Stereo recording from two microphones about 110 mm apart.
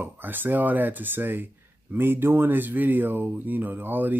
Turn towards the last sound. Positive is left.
turn(degrees=-15)  # may be behind; listen again after turning